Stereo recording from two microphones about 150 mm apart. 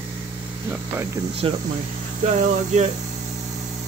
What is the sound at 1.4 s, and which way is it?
Speech, 35° right (ahead or behind).